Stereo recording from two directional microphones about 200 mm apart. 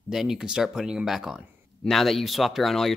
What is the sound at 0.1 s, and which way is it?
Speech, centre (ahead or behind).